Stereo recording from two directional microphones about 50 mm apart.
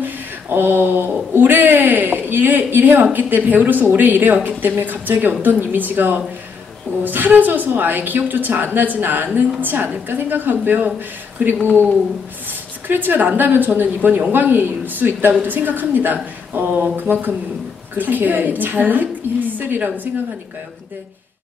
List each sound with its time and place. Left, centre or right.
0.0 s a woman's voice: right